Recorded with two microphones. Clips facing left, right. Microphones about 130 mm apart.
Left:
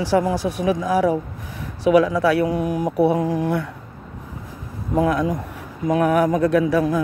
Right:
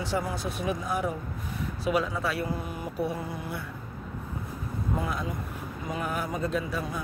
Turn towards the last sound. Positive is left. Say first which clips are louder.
# left 13 dB
turn(degrees=90)